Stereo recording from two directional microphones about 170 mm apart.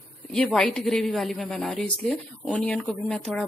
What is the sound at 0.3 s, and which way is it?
A woman's voice, 5° left (ahead or behind).